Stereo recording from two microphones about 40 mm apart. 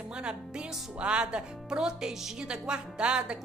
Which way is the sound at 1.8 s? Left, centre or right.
Centre.